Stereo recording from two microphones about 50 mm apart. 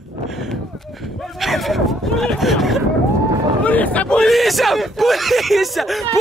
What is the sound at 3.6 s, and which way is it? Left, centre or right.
Speech, left.